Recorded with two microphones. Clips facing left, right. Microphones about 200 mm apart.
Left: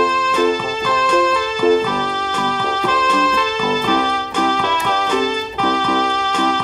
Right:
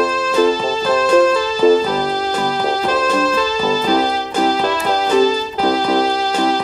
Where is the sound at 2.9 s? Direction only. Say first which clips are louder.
Right 2 dB; 35° right (ahead or behind).